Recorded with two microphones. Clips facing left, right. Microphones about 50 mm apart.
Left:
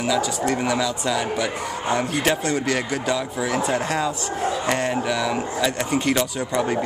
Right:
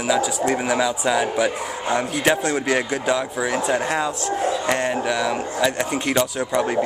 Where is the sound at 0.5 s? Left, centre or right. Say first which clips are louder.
Right 2 dB; centre.